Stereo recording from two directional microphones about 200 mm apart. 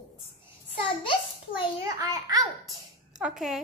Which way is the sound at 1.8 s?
15° right (ahead or behind).